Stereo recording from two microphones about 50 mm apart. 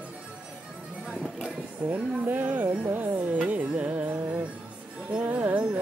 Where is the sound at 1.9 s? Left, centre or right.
Right.